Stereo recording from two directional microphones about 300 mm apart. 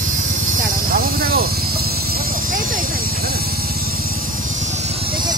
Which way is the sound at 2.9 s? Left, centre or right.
Right.